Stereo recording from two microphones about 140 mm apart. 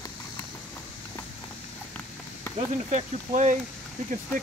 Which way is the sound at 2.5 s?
55° right (ahead or behind).